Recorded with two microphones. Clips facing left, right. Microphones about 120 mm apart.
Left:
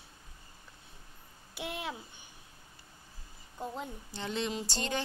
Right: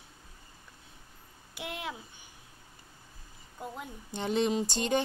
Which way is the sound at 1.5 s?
15° right (ahead or behind).